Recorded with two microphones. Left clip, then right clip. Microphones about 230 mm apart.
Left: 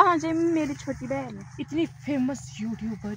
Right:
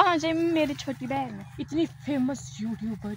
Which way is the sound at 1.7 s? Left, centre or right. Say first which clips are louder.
Even; centre.